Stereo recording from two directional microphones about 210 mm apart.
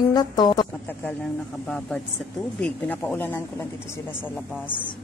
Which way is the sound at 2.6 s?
10° left (ahead or behind).